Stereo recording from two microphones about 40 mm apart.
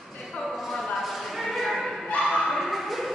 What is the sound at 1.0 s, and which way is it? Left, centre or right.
Choir, centre.